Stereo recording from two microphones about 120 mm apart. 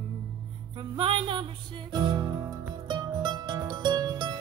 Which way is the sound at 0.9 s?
45° right (ahead or behind).